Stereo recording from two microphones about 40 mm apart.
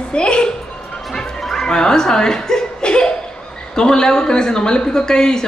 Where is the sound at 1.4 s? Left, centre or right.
Centre.